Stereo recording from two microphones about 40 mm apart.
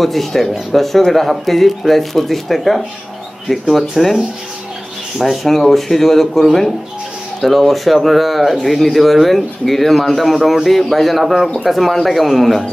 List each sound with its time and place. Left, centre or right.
0.0 s speech: centre
5.2 s speech: centre
7.4 s speech: centre